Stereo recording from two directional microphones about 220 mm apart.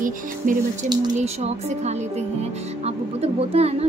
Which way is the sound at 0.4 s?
35° right (ahead or behind).